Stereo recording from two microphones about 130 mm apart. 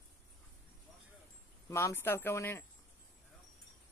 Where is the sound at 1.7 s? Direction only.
20° left (ahead or behind).